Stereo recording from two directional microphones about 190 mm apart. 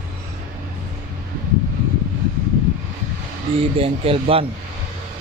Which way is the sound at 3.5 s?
30° right (ahead or behind).